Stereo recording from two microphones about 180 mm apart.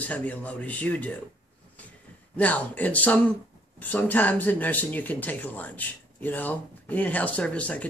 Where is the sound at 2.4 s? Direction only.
10° left (ahead or behind).